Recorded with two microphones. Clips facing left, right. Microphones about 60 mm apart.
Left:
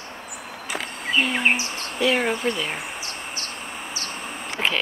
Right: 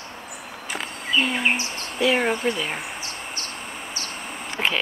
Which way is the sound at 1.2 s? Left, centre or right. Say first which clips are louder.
Even; centre.